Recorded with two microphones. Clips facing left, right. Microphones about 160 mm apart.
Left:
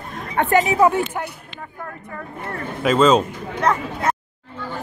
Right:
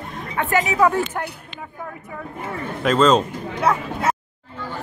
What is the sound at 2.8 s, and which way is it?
Speech, 5° left (ahead or behind).